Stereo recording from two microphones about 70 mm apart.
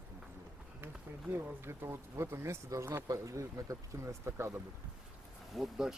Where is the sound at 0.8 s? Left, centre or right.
Right.